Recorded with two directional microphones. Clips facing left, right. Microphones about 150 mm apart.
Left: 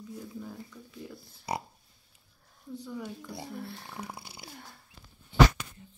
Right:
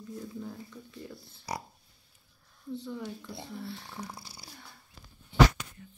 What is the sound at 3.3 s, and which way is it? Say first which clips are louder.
Speech: left 1 dB; 55° left (ahead or behind).